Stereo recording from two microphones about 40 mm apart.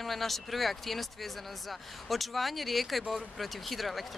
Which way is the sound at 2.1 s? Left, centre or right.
Centre.